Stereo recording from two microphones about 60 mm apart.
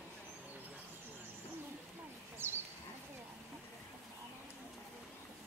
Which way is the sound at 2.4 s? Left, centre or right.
Right.